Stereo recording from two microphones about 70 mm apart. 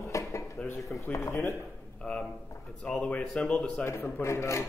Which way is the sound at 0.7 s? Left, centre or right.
Left.